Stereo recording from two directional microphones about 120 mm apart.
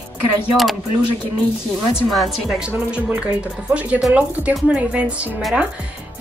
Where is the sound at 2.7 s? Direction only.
15° right (ahead or behind).